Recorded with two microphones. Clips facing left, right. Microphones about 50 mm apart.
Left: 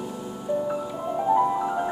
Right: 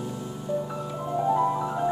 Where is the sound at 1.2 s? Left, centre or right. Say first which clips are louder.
Left 2 dB; centre.